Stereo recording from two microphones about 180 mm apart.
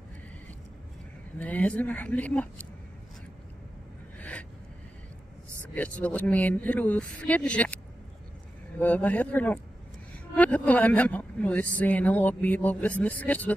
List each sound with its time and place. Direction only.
1.4 s speech: 10° left (ahead or behind)
4.2 s a sound: 5° left (ahead or behind)
5.8 s speech: 10° left (ahead or behind)